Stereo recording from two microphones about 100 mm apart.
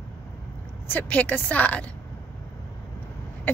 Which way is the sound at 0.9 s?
15° left (ahead or behind).